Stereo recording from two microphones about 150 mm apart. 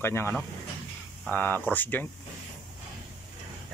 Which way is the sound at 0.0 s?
15° left (ahead or behind).